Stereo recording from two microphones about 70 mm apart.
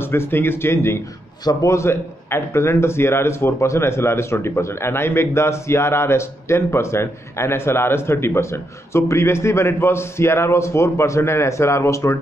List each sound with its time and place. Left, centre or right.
0.0 s a man's voice: left
1.4 s a man's voice: left
1.7 s a man's voice: left